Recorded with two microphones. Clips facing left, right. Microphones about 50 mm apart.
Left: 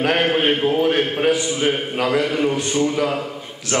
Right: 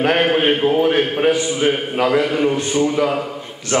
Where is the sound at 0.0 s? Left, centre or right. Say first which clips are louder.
Right 2 dB; centre.